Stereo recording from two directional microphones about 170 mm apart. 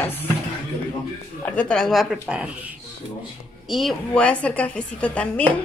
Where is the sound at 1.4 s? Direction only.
5° left (ahead or behind).